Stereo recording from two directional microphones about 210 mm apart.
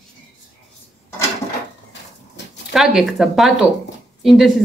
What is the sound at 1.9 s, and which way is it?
Dishes, 55° left (ahead or behind).